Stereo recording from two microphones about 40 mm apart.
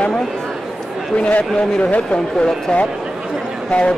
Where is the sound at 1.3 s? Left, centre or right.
Left.